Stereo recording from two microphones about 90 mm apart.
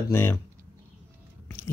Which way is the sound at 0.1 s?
25° left (ahead or behind).